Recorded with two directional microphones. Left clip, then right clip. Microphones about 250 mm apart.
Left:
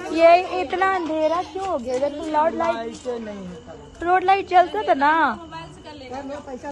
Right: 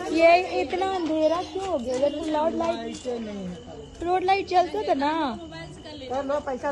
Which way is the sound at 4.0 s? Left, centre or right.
Left.